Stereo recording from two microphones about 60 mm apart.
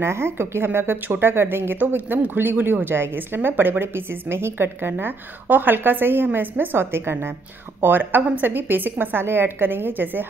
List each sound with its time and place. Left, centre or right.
0.0 s a woman's voice: right